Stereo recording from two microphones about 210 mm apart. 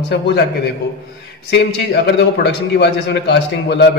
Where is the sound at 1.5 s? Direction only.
55° left (ahead or behind).